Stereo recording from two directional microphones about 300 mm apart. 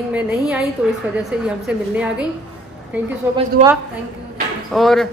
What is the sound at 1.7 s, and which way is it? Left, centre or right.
Speech, centre.